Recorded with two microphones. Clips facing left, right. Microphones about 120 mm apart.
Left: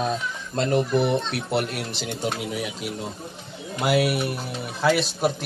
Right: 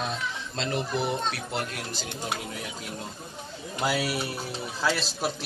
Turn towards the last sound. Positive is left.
turn(degrees=55)  # may be behind; listen again after turning